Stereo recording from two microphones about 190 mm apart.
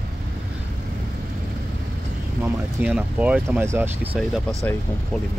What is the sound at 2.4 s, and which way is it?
Speech, 10° right (ahead or behind).